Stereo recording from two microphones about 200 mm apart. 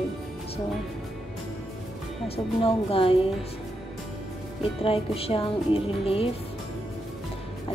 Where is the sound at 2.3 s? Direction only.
30° left (ahead or behind).